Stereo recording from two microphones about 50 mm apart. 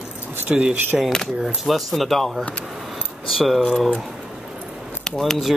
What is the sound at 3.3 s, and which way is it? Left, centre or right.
Speech, centre.